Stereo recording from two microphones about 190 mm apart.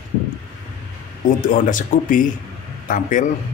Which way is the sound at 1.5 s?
45° left (ahead or behind).